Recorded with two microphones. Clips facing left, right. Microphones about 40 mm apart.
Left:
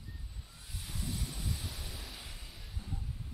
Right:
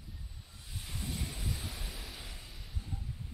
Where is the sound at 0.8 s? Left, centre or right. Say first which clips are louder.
Even; centre.